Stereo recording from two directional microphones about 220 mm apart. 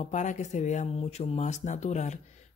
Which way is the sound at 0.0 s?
35° left (ahead or behind).